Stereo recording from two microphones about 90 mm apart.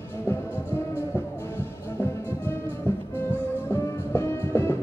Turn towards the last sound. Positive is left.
turn(degrees=30)  # may be behind; listen again after turning